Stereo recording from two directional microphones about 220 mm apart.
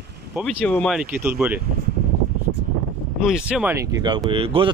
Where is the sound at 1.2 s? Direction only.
10° right (ahead or behind).